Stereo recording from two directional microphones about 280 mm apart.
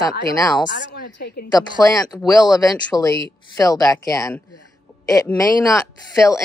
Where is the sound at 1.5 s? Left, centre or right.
Centre.